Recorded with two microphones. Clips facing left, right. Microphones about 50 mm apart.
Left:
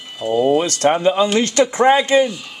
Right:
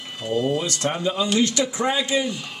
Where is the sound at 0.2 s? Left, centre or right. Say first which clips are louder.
Left 6 dB; centre.